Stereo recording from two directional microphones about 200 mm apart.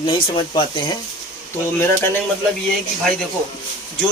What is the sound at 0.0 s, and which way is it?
Speech, 25° left (ahead or behind).